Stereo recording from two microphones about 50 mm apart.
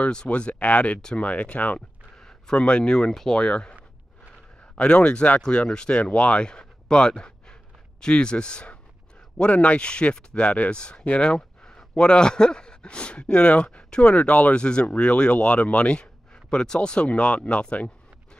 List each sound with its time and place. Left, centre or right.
0.0 s speech: centre
2.1 s speech: centre
4.7 s speech: centre